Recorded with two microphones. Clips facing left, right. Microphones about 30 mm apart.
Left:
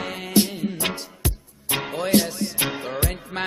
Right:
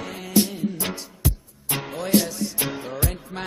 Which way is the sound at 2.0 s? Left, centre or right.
Left.